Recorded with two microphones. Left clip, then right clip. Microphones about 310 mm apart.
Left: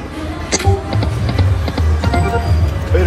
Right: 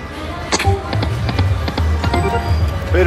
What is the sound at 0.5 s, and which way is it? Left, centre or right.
Music, centre.